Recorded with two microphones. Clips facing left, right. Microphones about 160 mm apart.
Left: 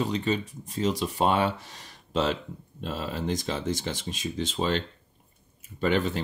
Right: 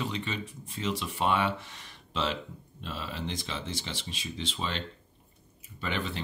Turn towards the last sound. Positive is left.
turn(degrees=45)  # may be behind; listen again after turning